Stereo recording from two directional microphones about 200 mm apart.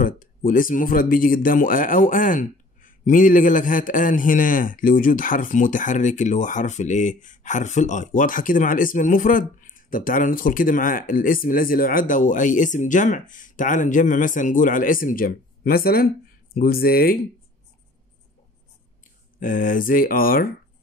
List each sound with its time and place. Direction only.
0.0 s speech: 45° left (ahead or behind)
19.4 s speech: 45° left (ahead or behind)